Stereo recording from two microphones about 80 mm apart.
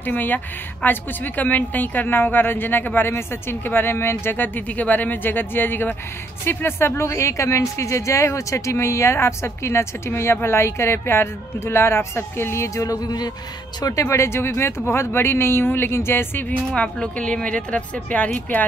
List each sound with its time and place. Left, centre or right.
0.0 s a woman's voice: left
14.0 s speech: left
16.4 s speech: centre